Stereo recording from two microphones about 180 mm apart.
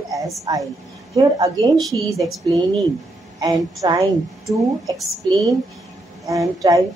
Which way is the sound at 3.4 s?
20° right (ahead or behind).